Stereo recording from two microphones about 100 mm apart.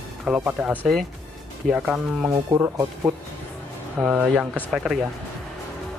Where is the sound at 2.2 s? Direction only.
25° right (ahead or behind).